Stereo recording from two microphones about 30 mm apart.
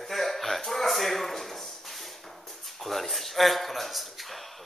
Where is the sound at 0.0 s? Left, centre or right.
Centre.